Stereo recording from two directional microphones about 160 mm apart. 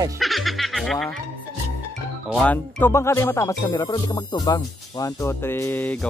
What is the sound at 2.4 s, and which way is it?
Speech, 10° left (ahead or behind).